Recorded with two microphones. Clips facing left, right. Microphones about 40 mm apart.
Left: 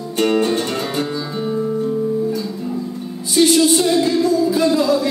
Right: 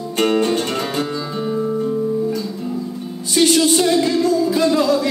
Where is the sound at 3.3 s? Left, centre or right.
Right.